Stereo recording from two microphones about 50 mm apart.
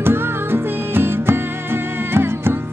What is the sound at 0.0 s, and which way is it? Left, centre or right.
Music, right.